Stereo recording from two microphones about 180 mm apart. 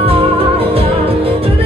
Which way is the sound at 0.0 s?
35° right (ahead or behind).